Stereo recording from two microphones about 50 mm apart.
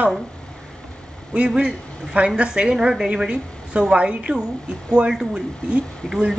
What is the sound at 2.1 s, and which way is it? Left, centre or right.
A woman's voice, right.